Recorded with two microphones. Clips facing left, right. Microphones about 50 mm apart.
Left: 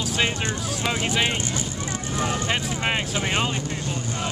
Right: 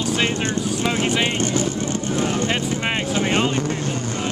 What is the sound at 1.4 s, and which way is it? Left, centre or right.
Speech, right.